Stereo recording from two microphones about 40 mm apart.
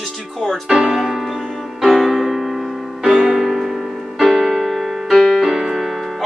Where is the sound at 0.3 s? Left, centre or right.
Centre.